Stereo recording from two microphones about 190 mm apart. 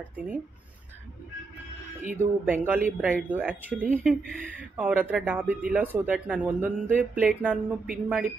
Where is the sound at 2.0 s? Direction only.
10° right (ahead or behind).